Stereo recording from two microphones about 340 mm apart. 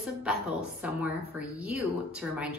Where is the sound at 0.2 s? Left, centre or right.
Centre.